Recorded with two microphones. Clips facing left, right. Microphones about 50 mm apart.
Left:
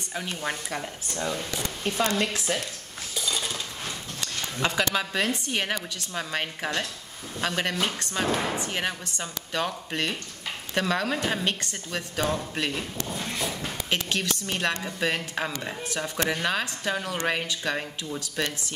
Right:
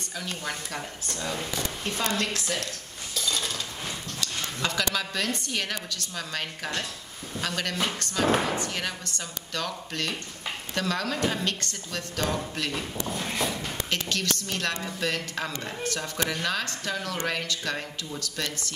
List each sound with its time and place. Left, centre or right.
0.1 s speech: left
0.7 s speech: centre
3.2 s dishes: centre
4.2 s speech: left
12.7 s speech: centre
13.8 s speech: centre
14.8 s speech: centre
15.0 s speech: centre